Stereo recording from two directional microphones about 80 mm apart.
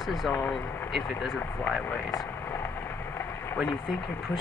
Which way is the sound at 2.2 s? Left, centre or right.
Left.